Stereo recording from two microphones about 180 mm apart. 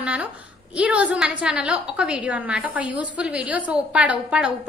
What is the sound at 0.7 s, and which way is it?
A woman's voice, 5° right (ahead or behind).